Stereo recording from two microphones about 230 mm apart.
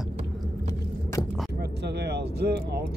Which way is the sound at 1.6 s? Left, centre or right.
Right.